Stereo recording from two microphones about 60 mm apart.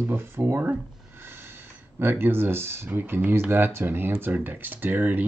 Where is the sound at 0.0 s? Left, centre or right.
Right.